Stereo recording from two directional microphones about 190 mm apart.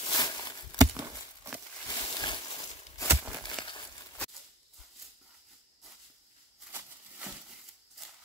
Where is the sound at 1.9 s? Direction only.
25° left (ahead or behind).